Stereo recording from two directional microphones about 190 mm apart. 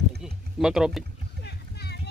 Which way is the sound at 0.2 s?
5° right (ahead or behind).